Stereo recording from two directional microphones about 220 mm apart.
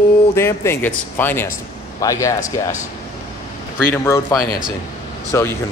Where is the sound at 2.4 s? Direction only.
35° left (ahead or behind).